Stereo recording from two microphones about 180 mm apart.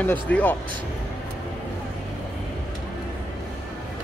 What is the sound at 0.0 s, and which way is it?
Speech, 10° left (ahead or behind).